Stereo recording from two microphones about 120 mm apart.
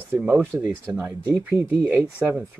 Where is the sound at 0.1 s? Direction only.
15° right (ahead or behind).